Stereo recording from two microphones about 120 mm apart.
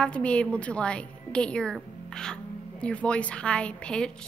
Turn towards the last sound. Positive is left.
turn(degrees=5)  # may be behind; listen again after turning